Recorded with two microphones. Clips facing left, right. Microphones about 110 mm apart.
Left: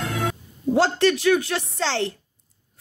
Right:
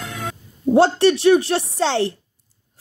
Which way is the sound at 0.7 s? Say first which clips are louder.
Right 5 dB; 20° right (ahead or behind).